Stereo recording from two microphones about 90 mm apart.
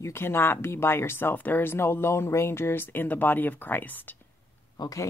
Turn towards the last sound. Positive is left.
turn(degrees=45)  # may be behind; listen again after turning